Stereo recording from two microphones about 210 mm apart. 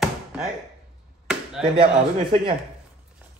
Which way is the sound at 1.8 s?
25° right (ahead or behind).